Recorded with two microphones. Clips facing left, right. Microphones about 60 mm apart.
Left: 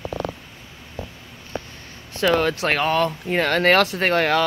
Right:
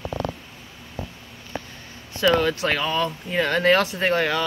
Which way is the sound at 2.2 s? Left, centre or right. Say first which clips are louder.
Even; left.